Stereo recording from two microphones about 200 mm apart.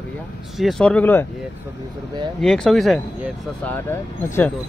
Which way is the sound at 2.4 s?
5° left (ahead or behind).